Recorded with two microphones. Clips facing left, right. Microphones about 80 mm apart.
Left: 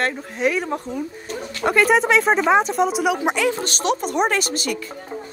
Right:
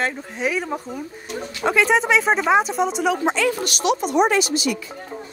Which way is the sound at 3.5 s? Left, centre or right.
Left.